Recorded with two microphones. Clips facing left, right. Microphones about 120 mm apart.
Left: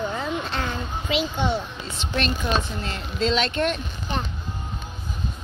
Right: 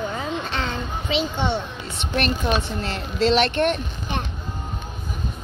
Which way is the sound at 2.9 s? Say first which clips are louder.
Right 4 dB; 65° right (ahead or behind).